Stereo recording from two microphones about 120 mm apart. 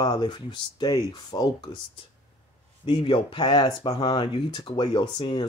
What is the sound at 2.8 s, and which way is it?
Speech, 45° left (ahead or behind).